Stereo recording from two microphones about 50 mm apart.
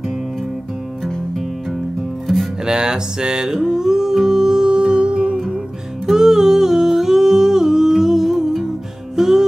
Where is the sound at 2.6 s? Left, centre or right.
Centre.